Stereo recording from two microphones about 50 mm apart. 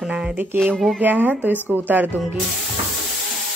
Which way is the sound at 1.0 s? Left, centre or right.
Right.